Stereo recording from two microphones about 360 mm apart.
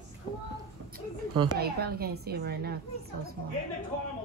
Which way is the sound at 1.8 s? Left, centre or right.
Right.